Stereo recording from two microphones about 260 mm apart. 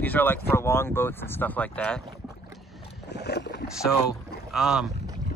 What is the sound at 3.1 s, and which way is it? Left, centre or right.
Rowboat, left.